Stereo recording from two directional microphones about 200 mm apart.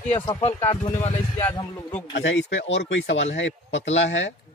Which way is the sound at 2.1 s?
65° left (ahead or behind).